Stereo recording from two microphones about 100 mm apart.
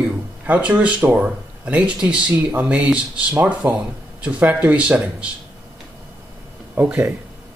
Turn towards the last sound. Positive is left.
turn(degrees=-15)  # may be behind; listen again after turning